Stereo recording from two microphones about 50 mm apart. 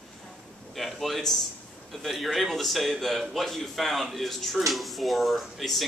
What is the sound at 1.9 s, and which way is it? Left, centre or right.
A man's voice, centre.